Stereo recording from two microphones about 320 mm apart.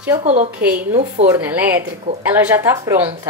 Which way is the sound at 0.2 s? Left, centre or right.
Right.